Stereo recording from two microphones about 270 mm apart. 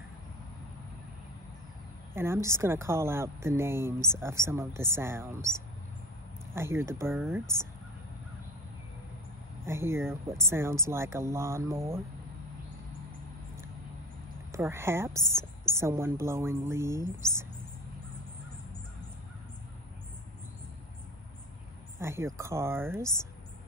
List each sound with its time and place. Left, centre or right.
2.1 s a woman's voice: centre
9.7 s a woman's voice: centre
14.5 s a woman's voice: centre
22.0 s a woman's voice: centre